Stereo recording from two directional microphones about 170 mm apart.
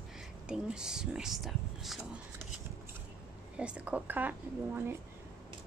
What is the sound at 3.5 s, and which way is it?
Speech, 5° right (ahead or behind).